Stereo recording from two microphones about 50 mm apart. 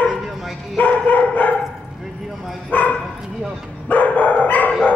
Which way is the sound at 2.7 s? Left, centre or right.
Left.